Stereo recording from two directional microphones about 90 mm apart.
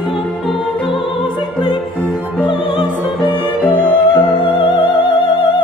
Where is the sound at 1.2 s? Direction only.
60° left (ahead or behind).